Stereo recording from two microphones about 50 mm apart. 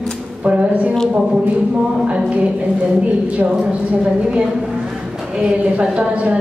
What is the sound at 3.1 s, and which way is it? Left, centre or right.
A woman's voice, right.